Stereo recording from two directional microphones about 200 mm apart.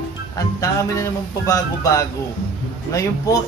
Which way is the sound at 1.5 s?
15° left (ahead or behind).